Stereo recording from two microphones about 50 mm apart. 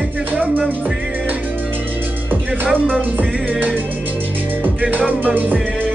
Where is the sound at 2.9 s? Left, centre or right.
Right.